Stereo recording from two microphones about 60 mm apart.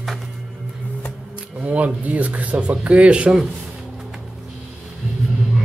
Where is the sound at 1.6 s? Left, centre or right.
Right.